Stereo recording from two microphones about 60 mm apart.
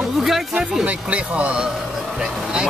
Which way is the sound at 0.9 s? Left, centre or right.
Right.